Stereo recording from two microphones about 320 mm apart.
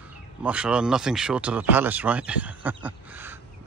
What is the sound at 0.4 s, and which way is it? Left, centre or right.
Speech, centre.